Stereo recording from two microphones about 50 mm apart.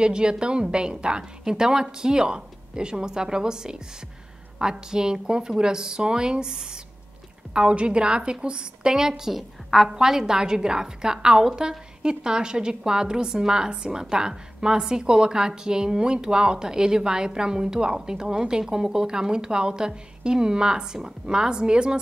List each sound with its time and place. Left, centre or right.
0.0 s a woman's voice: centre